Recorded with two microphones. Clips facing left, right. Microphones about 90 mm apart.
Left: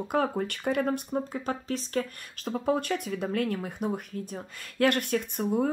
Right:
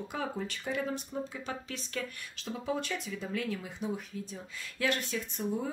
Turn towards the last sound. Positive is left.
turn(degrees=55)  # may be behind; listen again after turning